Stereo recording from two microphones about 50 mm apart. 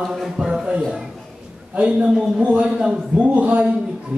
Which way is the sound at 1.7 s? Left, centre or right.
Right.